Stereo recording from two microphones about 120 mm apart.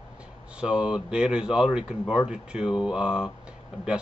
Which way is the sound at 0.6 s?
5° right (ahead or behind).